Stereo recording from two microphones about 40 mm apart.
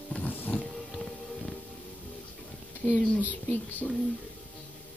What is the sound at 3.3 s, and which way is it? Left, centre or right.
Speech, left.